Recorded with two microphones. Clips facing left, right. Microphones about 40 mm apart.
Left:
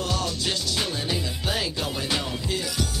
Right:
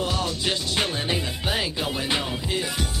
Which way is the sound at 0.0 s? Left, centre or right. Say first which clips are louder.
Right 2 dB; right.